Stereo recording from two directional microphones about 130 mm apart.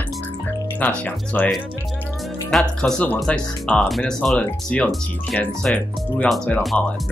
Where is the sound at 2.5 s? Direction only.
5° left (ahead or behind).